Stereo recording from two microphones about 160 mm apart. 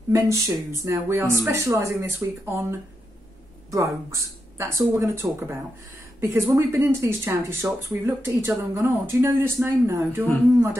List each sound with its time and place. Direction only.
0.1 s speech: 20° right (ahead or behind)
3.7 s speech: 20° right (ahead or behind)